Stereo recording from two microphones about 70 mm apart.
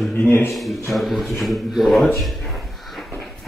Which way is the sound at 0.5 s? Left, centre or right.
Centre.